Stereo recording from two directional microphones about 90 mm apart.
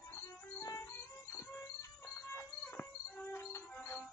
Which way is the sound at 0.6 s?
35° left (ahead or behind).